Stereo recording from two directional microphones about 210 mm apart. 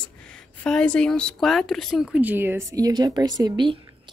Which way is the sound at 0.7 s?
5° left (ahead or behind).